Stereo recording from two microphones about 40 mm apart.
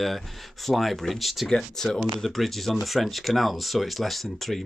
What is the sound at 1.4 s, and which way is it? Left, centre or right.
Speech, centre.